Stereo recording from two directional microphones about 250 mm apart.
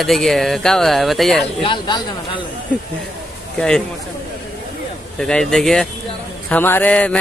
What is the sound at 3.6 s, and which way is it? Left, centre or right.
Speech, centre.